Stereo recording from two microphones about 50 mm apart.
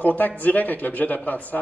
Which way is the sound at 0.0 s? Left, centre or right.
Left.